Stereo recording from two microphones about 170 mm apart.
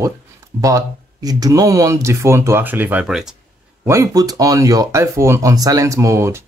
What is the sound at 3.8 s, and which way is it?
Speech, 20° right (ahead or behind).